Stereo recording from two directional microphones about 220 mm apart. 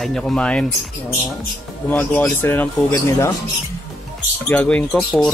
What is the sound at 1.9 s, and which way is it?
Speech, 10° left (ahead or behind).